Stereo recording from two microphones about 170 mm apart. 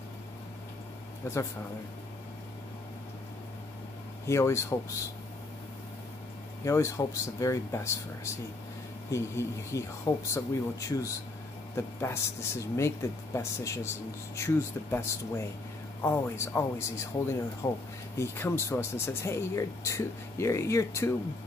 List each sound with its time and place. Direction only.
1.2 s speech: 15° left (ahead or behind)
4.3 s speech: 15° left (ahead or behind)
6.6 s speech: 15° left (ahead or behind)